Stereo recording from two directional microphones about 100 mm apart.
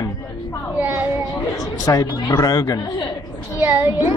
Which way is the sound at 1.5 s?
35° left (ahead or behind).